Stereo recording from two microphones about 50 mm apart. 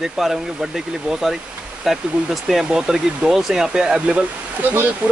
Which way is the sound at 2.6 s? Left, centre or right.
Centre.